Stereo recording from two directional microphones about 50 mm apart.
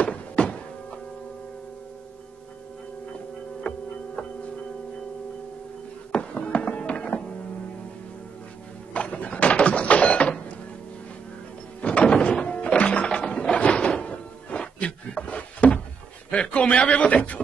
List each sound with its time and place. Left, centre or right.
0.0 s thunk: left
3.6 s hum: left
6.1 s music: left
8.9 s a sound: left
11.8 s thunk: left
12.6 s music: left
13.6 s a sound: left